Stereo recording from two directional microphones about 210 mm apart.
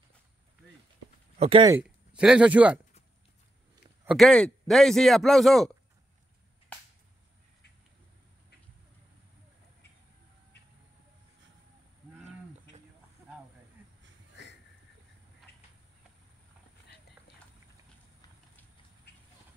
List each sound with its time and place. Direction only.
1.4 s speech: 25° right (ahead or behind)
1.7 s speech: 5° right (ahead or behind)
4.0 s speech: centre (ahead or behind)
15.5 s a sound: 50° left (ahead or behind)